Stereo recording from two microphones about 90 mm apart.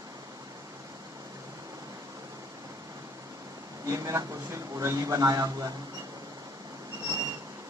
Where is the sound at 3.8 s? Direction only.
35° right (ahead or behind).